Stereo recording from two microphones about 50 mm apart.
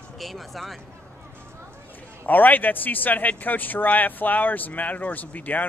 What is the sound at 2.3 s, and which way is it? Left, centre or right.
Speech, left.